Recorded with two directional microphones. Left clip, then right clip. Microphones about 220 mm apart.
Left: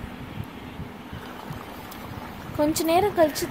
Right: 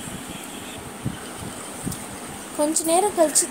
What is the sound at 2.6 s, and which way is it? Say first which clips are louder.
Speech: right 1 dB; 10° right (ahead or behind).